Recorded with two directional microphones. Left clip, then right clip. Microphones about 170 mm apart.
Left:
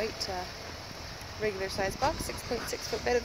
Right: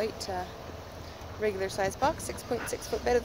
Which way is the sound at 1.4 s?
5° left (ahead or behind).